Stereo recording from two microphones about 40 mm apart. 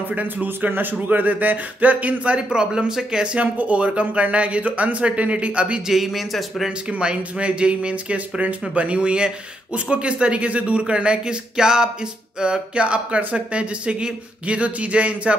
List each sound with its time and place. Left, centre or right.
0.1 s speech: right
2.5 s speech: right
3.3 s speech: right
5.9 s speech: centre
6.9 s speech: right